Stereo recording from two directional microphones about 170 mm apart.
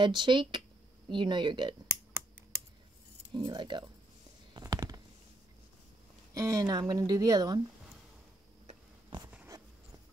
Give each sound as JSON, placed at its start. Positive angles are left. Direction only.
{"t": 0.0, "sound": "speech", "side_deg": -25}
{"t": 3.3, "sound": "speech", "side_deg": -25}
{"t": 4.6, "sound": "a sound", "side_deg": -25}
{"t": 6.3, "sound": "speech", "side_deg": -20}